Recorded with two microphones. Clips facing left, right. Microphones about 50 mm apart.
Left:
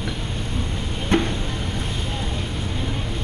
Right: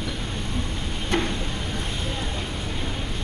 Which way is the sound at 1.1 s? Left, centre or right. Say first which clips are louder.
Left 4 dB; left.